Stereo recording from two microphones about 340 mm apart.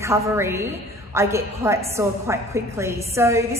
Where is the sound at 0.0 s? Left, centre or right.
Centre.